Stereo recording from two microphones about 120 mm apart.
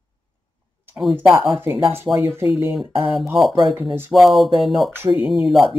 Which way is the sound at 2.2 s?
20° right (ahead or behind).